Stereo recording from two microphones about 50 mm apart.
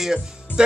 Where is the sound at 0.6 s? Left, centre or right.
Centre.